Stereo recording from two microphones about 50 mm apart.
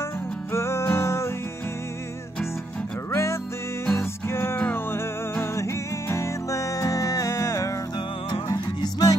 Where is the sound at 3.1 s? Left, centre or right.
Left.